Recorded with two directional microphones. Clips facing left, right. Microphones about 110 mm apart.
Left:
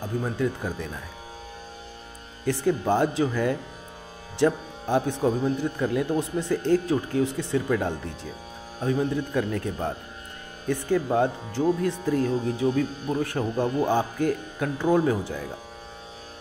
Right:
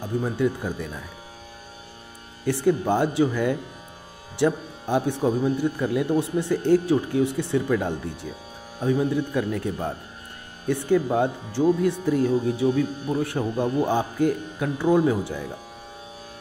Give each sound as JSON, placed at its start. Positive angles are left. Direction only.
{"t": 0.4, "sound": "speech", "side_deg": -15}
{"t": 2.4, "sound": "speech", "side_deg": -15}